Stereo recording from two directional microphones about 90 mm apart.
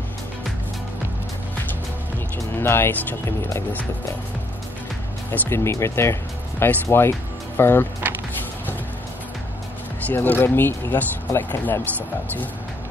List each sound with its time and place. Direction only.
2.3 s music: 25° left (ahead or behind)
3.3 s speech: 30° left (ahead or behind)
5.3 s speech: 30° left (ahead or behind)
10.1 s speech: 20° left (ahead or behind)